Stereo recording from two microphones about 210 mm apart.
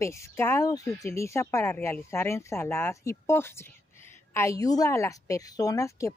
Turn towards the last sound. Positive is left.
turn(degrees=15)  # may be behind; listen again after turning